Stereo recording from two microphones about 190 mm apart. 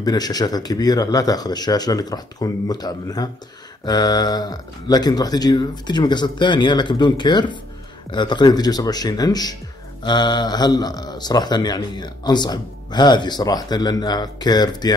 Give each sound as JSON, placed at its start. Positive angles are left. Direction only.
{"t": 0.0, "sound": "speech", "side_deg": 20}